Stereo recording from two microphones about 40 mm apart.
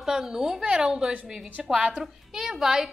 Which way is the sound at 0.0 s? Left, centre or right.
Centre.